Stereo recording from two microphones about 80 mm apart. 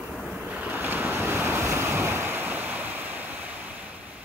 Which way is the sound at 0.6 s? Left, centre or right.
Right.